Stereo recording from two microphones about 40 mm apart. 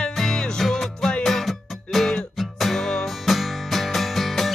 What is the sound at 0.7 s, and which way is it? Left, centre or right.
Music, centre.